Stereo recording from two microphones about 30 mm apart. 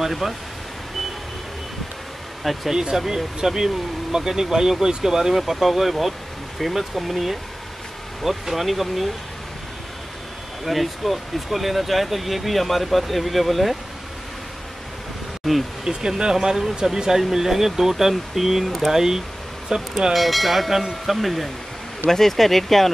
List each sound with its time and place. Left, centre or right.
0.0 s speech: centre
2.7 s speech: right
7.0 s speech: centre
10.6 s speech: centre
15.5 s speech: centre
15.8 s speech: right
16.5 s speech: centre
20.1 s speech: centre